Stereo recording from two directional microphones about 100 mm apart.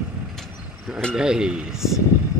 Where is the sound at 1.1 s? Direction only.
5° right (ahead or behind).